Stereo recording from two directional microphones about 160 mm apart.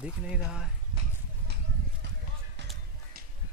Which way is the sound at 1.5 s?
90° right.